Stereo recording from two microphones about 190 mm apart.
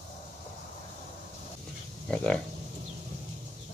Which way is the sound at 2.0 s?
5° left (ahead or behind).